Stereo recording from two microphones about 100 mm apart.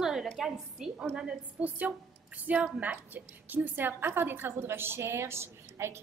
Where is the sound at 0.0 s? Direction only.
5° right (ahead or behind).